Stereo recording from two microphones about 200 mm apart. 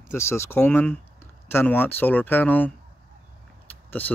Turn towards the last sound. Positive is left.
turn(degrees=10)  # may be behind; listen again after turning